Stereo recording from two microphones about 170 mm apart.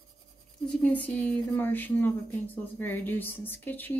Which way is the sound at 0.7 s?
10° left (ahead or behind).